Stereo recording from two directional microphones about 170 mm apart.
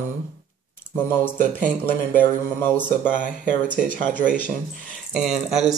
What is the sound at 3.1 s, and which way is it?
Speech, 50° right (ahead or behind).